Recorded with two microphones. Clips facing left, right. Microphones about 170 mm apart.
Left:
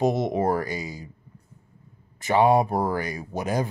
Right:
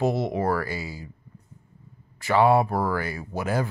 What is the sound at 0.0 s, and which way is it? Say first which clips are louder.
Speech: left 2 dB; 20° left (ahead or behind).